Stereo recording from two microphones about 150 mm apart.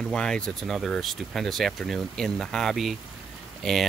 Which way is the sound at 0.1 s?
5° left (ahead or behind).